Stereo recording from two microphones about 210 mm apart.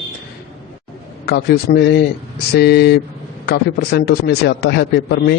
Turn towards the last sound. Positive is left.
turn(degrees=50)  # may be behind; listen again after turning